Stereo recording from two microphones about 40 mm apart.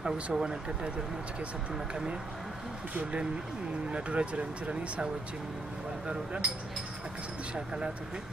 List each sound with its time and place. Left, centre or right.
0.0 s speech: centre
2.9 s speech: right
3.9 s speech: right
7.5 s speech: right